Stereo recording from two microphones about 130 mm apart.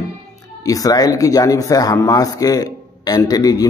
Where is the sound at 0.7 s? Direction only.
30° left (ahead or behind).